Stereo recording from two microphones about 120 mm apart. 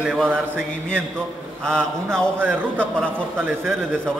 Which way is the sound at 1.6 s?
5° left (ahead or behind).